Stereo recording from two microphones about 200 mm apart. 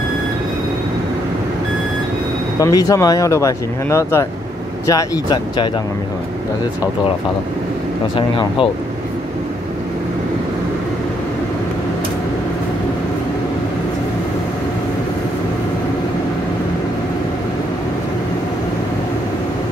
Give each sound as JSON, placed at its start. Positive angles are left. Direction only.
{"t": 2.6, "sound": "speech", "side_deg": 15}
{"t": 8.2, "sound": "speech", "side_deg": 25}